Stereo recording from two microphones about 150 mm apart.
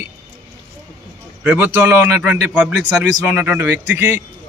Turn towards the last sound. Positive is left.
turn(degrees=-15)  # may be behind; listen again after turning